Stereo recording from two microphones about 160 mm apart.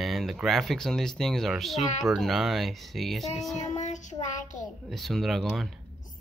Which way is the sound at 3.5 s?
45° left (ahead or behind).